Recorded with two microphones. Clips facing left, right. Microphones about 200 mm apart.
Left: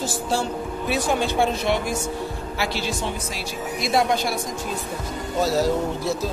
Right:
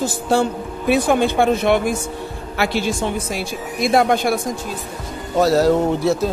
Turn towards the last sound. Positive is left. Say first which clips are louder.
# right 7 dB
turn(degrees=-65)  # may be behind; listen again after turning